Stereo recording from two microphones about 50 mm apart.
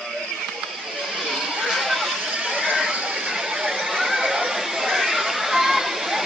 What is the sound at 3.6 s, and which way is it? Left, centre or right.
Chatter, centre.